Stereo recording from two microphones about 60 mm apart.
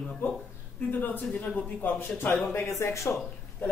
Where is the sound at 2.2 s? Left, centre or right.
Left.